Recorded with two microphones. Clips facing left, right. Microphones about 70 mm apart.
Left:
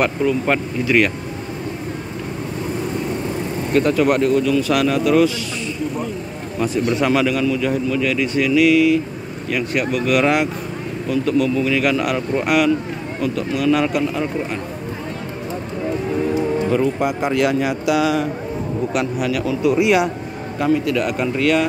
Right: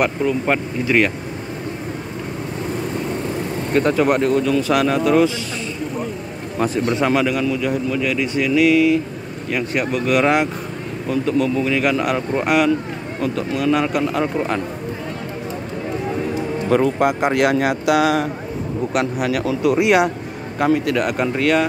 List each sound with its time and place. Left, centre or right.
0.5 s speech: centre
0.8 s a man's voice: right
3.7 s speech: right
6.9 s a man's voice: right
8.5 s a man's voice: right
16.7 s speech: right
17.3 s a man's voice: right
18.9 s a man's voice: right
21.4 s speech: right